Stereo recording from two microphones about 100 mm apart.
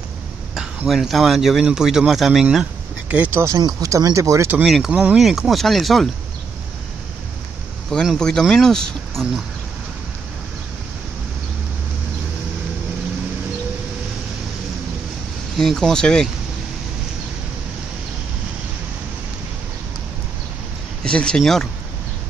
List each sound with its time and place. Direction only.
0.8 s speech: centre (ahead or behind)
3.5 s speech: 35° right (ahead or behind)
4.6 s speech: 5° right (ahead or behind)
7.9 s speech: 5° left (ahead or behind)
15.5 s speech: centre (ahead or behind)
21.0 s speech: 10° left (ahead or behind)